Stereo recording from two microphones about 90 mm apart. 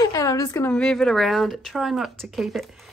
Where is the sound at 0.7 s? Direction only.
10° left (ahead or behind).